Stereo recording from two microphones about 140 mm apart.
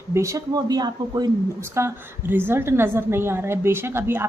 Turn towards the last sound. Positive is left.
turn(degrees=-15)  # may be behind; listen again after turning